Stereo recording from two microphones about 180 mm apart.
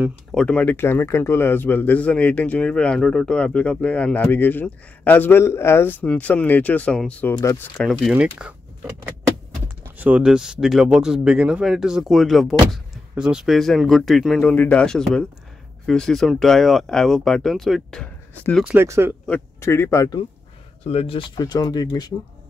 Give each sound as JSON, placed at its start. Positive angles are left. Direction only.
{"t": 0.3, "sound": "a man's voice", "side_deg": 5}
{"t": 8.1, "sound": "speech", "side_deg": -5}
{"t": 9.9, "sound": "speech", "side_deg": -10}
{"t": 18.6, "sound": "speech", "side_deg": -10}
{"t": 19.2, "sound": "speech", "side_deg": 10}
{"t": 20.8, "sound": "speech", "side_deg": 35}